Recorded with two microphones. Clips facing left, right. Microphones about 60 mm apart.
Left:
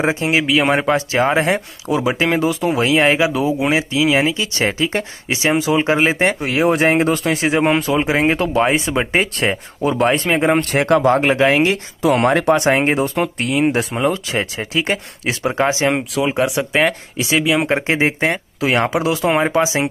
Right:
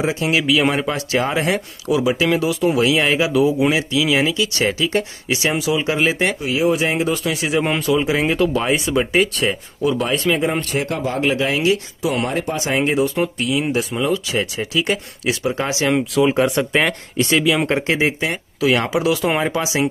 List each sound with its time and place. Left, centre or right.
0.1 s speech: left
6.4 s speech: left
10.5 s speech: left
11.3 s speech: left
12.1 s speech: left
12.5 s speech: left
16.2 s speech: centre
17.7 s speech: left